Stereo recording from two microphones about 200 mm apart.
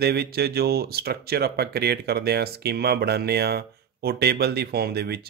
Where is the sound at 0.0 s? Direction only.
50° right (ahead or behind).